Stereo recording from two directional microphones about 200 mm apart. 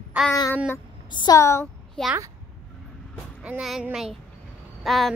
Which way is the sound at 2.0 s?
5° left (ahead or behind).